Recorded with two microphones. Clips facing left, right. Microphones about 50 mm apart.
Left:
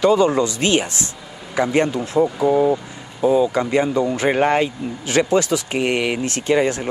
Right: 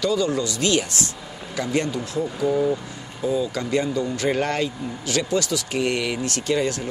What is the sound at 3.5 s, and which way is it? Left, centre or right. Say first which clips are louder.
Speech: left 5 dB; left.